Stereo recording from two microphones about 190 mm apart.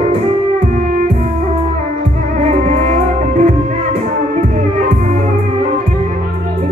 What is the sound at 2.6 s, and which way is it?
Music, 45° right (ahead or behind).